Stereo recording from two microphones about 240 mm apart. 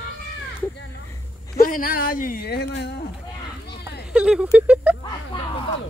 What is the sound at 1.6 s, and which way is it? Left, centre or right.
Speech, left.